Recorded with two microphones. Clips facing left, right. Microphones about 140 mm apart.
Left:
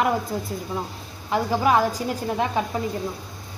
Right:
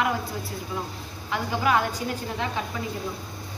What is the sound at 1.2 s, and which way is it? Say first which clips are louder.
Speech: left 4 dB; 40° left (ahead or behind).